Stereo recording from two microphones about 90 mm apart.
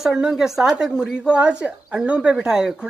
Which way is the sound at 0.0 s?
5° right (ahead or behind).